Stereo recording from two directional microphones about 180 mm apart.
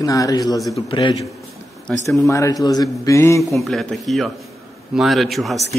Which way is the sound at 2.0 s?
15° left (ahead or behind).